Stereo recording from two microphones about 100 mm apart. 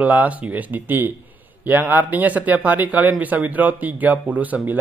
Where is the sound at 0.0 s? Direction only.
15° right (ahead or behind).